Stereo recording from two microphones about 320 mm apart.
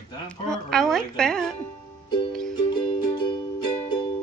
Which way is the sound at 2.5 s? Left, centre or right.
Centre.